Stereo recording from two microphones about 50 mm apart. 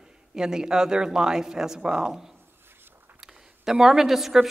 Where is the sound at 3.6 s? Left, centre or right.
Centre.